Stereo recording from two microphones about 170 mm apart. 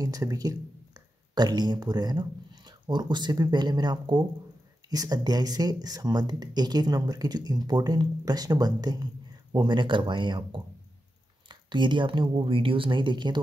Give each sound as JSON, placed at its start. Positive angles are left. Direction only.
{"t": 0.0, "sound": "speech", "side_deg": -20}